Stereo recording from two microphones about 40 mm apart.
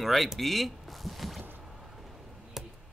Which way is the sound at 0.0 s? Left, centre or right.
Centre.